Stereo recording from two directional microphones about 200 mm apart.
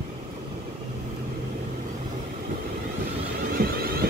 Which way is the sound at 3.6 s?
50° right (ahead or behind).